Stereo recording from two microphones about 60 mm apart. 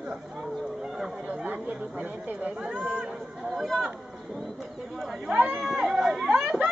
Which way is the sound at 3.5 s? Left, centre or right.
Centre.